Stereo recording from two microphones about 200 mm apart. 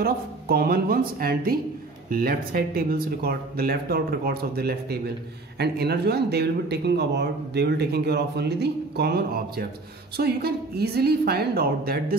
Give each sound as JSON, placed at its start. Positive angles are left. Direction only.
{"t": 0.0, "sound": "speech", "side_deg": -50}